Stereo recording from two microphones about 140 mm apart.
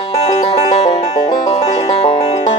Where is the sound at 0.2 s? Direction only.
50° left (ahead or behind).